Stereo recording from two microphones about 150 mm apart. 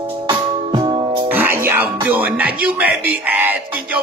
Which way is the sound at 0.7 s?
35° right (ahead or behind).